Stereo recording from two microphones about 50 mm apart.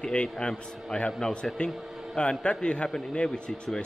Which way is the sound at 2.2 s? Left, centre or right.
Centre.